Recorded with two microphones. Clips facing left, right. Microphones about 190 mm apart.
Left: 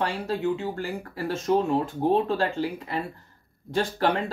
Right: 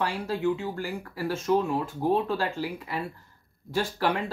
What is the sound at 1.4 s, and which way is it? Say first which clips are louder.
Speech: left 3 dB; 30° left (ahead or behind).